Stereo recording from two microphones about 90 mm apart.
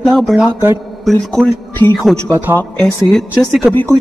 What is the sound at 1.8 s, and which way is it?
Speech, 60° right (ahead or behind).